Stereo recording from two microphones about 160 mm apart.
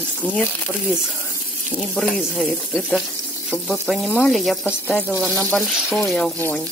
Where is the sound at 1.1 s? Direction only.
15° left (ahead or behind).